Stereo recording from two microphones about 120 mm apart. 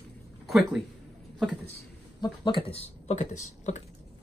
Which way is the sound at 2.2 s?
45° left (ahead or behind).